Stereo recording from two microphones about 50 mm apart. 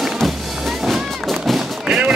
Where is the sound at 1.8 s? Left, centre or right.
Centre.